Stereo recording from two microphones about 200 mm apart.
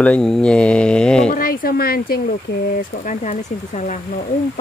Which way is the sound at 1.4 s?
45° left (ahead or behind).